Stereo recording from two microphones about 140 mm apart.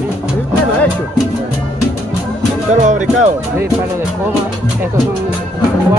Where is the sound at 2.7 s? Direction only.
60° right (ahead or behind).